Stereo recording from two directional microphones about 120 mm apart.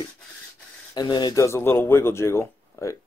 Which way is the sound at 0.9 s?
35° left (ahead or behind).